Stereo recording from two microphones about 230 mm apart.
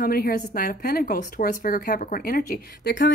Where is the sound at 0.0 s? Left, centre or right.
Left.